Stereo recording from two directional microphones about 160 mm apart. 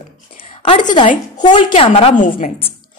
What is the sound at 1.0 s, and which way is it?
Speech, 50° left (ahead or behind).